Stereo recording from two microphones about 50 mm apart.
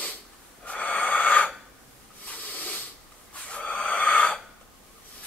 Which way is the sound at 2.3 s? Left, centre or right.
Left.